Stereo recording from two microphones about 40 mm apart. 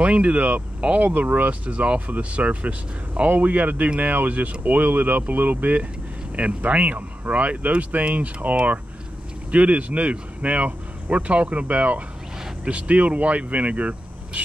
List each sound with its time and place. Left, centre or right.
0.0 s speech: right
6.3 s speech: right